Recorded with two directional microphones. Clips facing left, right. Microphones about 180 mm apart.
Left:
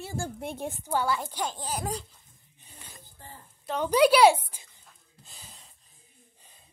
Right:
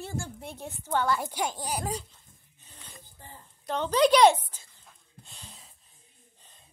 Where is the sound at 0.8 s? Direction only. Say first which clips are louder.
Right 1 dB; 10° left (ahead or behind).